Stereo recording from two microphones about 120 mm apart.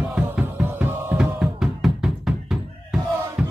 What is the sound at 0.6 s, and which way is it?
Music, 15° right (ahead or behind).